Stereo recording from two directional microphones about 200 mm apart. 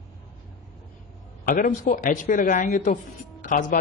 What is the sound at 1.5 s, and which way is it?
A man's voice, 45° left (ahead or behind).